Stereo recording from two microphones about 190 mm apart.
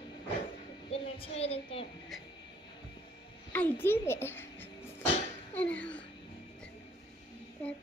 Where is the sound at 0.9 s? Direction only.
30° left (ahead or behind).